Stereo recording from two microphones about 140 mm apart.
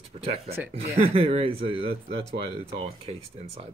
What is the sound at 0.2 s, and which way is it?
Speech, 45° right (ahead or behind).